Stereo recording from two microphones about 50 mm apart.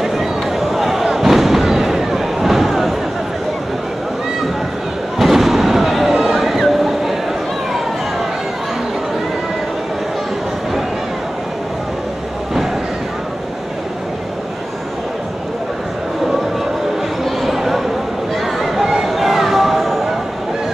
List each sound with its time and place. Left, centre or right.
0.0 s fireworks: centre
5.2 s fireworks: centre
17.2 s a sound: centre